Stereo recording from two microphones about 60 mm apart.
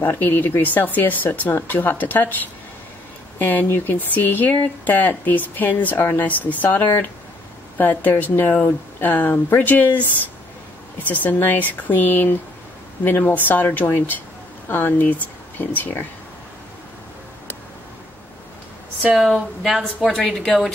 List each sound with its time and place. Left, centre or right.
0.0 s speech: left
3.3 s speech: left
11.1 s speech: left
19.1 s a woman's voice: centre
20.1 s a woman's voice: centre